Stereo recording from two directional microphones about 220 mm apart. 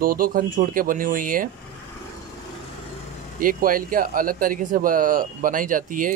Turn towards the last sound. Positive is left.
turn(degrees=-35)  # may be behind; listen again after turning